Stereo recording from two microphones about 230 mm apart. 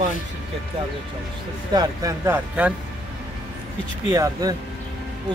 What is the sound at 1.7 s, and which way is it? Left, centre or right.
Speech, centre.